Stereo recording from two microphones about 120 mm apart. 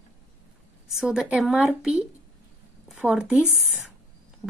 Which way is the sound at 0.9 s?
5° right (ahead or behind).